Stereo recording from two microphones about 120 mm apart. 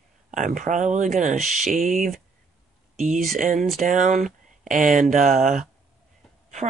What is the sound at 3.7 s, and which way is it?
Speech, 90° right.